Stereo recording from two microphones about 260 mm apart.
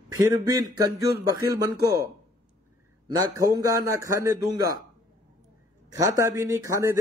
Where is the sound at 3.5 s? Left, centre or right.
Centre.